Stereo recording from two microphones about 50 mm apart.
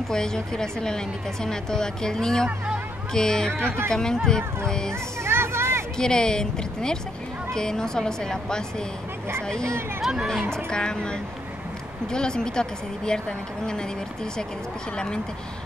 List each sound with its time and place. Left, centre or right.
0.1 s speech: centre
5.2 s music: right
5.9 s speech: centre